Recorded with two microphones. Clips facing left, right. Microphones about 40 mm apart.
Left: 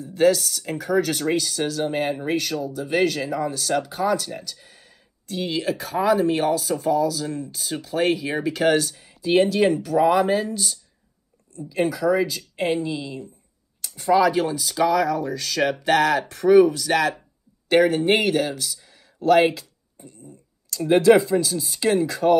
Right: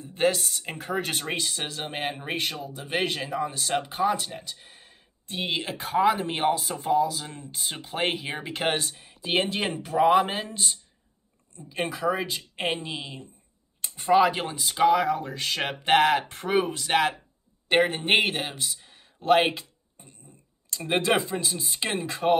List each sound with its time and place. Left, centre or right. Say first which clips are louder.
0.0 s speech: left 6 dB; right
19.2 s a sound: left 4 dB; right
20.7 s speech: left 9 dB; right